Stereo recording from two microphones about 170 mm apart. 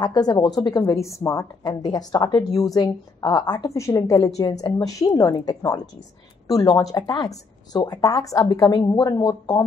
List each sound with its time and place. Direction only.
0.0 s a woman's voice: 25° left (ahead or behind)